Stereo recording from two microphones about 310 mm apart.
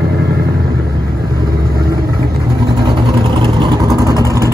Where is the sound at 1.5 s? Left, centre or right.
Right.